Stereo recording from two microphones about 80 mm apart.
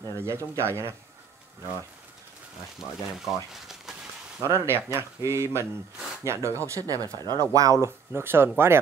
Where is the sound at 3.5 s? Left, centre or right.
Centre.